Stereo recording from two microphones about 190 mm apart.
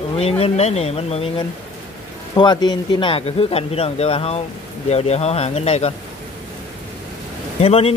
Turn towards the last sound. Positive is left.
turn(degrees=30)  # may be behind; listen again after turning